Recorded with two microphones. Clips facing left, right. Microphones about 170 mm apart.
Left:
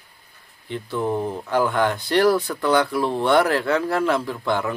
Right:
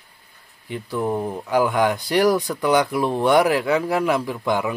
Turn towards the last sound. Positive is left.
turn(degrees=-15)  # may be behind; listen again after turning